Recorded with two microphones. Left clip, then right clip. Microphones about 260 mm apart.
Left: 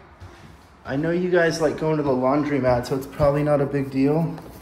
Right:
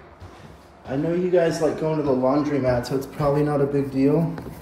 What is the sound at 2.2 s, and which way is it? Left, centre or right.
Speech, left.